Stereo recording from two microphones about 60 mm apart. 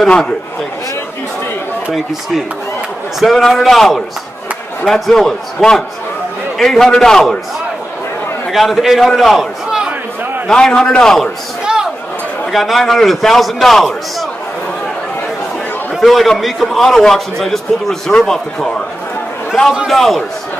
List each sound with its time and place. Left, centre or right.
0.0 s a man's voice: centre
3.2 s a man's voice: centre
8.5 s a man's voice: centre
10.5 s a man's voice: centre
11.6 s a sound: centre
12.5 s a man's voice: centre
16.0 s a man's voice: centre
19.9 s a man's voice: centre